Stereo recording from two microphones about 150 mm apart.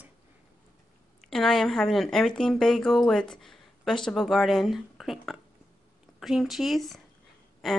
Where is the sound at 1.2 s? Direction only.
Centre (ahead or behind).